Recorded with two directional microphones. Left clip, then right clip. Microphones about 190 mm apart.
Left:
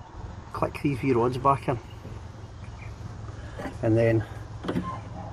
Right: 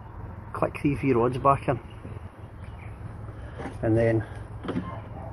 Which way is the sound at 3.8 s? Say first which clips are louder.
Left 1 dB; 25° left (ahead or behind).